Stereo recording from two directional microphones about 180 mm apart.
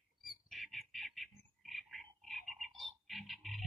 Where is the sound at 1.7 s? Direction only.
Centre (ahead or behind).